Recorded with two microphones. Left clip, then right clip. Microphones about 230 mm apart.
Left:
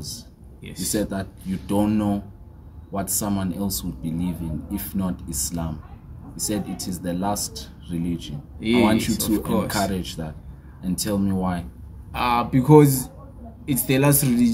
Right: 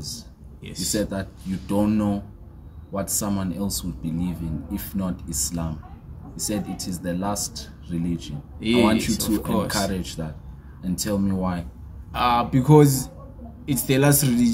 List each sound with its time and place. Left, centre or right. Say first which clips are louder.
0.6 s speech: right 2 dB; centre
0.9 s speech: left 1 dB; centre
8.5 s speech: even; centre
8.8 s speech: left 1 dB; centre
9.3 s speech: left 2 dB; centre
9.7 s speech: left 1 dB; centre
12.1 s speech: right 1 dB; centre